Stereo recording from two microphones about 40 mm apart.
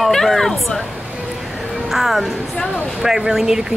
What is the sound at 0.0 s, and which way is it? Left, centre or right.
Speech, centre.